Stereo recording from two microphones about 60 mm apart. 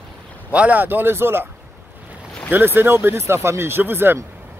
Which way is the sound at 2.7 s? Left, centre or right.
Right.